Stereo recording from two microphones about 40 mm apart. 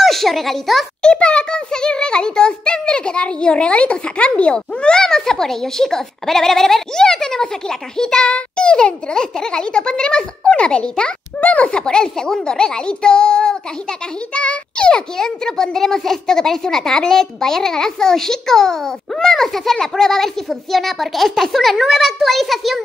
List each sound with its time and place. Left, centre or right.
0.0 s a child's voice: centre
1.0 s a child's voice: left
5.0 s a child's voice: centre
11.3 s speech: left
11.6 s a child's voice: left; by 22.8 s centre